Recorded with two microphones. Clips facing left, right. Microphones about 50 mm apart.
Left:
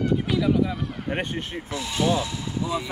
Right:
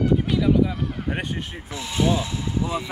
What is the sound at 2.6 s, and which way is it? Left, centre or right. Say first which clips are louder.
Speech: left 1 dB; right.